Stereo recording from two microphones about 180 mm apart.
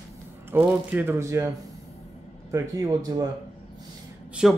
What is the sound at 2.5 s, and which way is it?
Speech, 20° right (ahead or behind).